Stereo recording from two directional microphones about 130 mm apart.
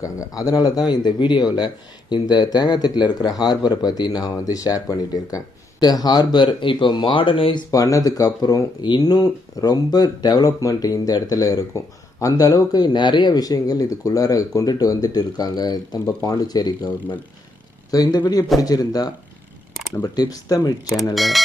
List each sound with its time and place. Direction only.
0.0 s speech: 25° left (ahead or behind); by 7.6 s 40° left (ahead or behind)
7.7 s speech: 25° left (ahead or behind)
21.1 s speech: centre (ahead or behind)